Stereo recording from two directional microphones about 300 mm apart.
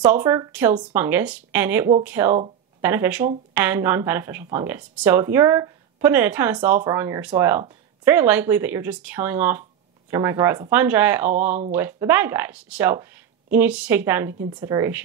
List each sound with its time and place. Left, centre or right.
0.0 s speech: centre